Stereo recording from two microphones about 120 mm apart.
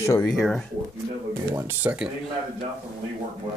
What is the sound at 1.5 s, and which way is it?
Speech, 15° right (ahead or behind).